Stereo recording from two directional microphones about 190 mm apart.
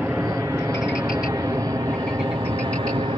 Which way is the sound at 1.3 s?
20° right (ahead or behind).